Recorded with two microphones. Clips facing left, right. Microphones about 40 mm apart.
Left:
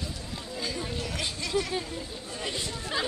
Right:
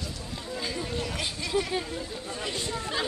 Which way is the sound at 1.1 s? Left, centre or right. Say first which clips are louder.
Even; centre.